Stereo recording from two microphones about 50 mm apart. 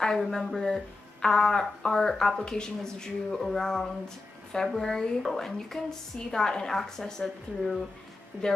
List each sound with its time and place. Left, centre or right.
0.3 s speech: centre
8.3 s speech: centre